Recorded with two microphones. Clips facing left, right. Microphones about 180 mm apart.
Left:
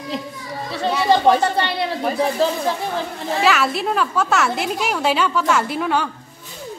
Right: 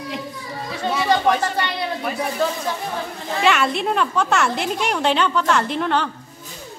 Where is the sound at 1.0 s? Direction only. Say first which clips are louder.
Left 4 dB; 30° left (ahead or behind).